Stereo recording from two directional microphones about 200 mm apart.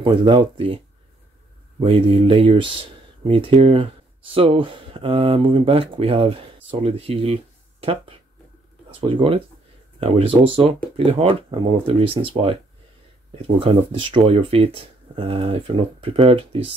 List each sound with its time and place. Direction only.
0.0 s speech: 25° right (ahead or behind)
1.8 s speech: 30° right (ahead or behind)